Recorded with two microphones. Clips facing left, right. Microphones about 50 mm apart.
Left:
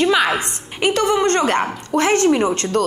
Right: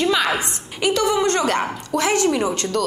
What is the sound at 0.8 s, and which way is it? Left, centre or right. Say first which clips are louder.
Speech: left 2 dB; left.